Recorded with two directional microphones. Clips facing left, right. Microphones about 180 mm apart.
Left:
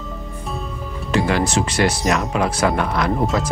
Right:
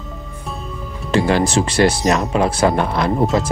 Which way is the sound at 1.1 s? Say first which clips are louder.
Right 3 dB; 30° right (ahead or behind).